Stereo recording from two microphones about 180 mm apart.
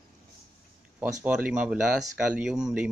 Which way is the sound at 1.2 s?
5° right (ahead or behind).